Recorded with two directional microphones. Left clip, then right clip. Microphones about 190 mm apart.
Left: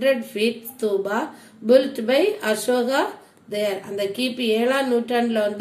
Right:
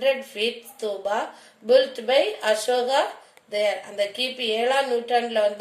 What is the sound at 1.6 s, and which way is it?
Speech, 10° right (ahead or behind).